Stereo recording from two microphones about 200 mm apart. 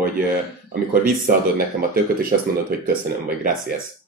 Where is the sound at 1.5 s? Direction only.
45° right (ahead or behind).